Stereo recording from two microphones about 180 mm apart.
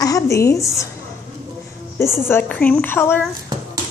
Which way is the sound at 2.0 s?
15° left (ahead or behind).